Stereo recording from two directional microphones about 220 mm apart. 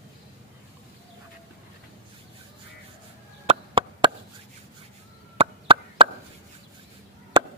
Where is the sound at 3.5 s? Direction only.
25° right (ahead or behind).